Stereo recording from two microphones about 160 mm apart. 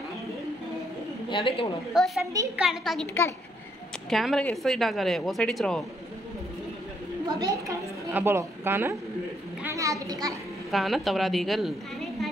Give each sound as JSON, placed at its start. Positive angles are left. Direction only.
{"t": 1.3, "sound": "a woman's voice", "side_deg": 35}
{"t": 2.0, "sound": "speech", "side_deg": 0}
{"t": 4.1, "sound": "speech", "side_deg": 0}
{"t": 7.3, "sound": "a woman's voice", "side_deg": -20}
{"t": 9.6, "sound": "a sound", "side_deg": -20}
{"t": 10.7, "sound": "speech", "side_deg": 0}